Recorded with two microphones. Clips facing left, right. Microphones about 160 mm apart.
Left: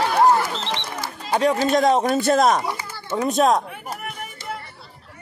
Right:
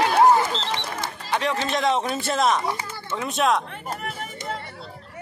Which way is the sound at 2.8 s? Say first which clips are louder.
Right 1 dB; 25° right (ahead or behind).